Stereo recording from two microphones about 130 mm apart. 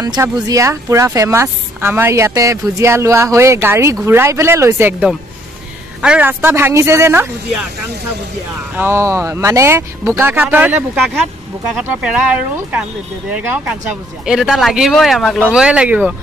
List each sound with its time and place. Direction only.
0.0 s speech: 30° right (ahead or behind)
5.9 s a woman's voice: 10° right (ahead or behind)
8.7 s speech: 20° right (ahead or behind)
12.0 s a woman's voice: 5° right (ahead or behind)